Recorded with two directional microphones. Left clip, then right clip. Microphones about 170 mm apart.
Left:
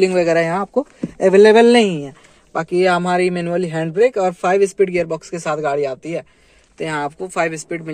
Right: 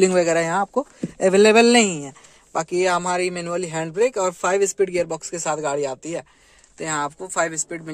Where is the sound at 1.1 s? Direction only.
10° right (ahead or behind).